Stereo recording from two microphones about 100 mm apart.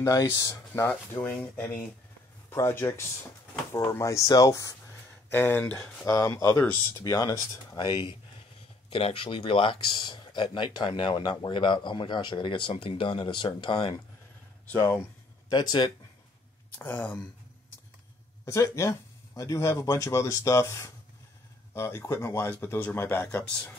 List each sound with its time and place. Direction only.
0.0 s speech: 35° left (ahead or behind)
1.3 s speech: 15° left (ahead or behind)
2.5 s speech: 30° left (ahead or behind)
5.3 s speech: 20° left (ahead or behind)
6.0 s speech: 35° left (ahead or behind)
7.0 s speech: 40° left (ahead or behind)
15.5 s speech: 45° left (ahead or behind)
16.7 s speech: 20° left (ahead or behind)
18.4 s speech: 30° left (ahead or behind); by 23.7 s 15° left (ahead or behind)